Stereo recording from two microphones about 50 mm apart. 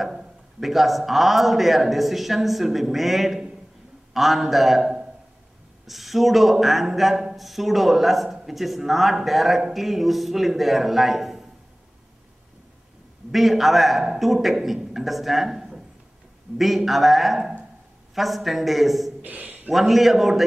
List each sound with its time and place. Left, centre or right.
0.0 s a man's voice: centre
13.3 s a man's voice: centre
19.2 s a sound: right
19.7 s a man's voice: centre